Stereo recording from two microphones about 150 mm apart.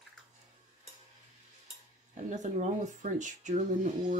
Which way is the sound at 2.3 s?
55° right (ahead or behind).